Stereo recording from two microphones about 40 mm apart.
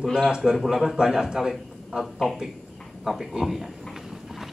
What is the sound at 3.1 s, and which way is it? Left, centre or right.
Speech, centre.